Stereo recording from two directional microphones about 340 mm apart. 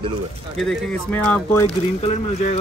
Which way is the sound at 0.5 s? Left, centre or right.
Centre.